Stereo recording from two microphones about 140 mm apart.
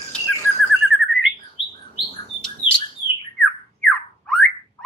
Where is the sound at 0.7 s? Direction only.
Centre (ahead or behind).